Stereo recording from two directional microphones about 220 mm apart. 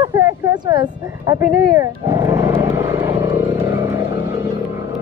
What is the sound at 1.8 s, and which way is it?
Roaring cats, 15° right (ahead or behind).